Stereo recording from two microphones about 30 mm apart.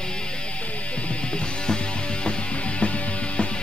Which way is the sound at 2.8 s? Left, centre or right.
Left.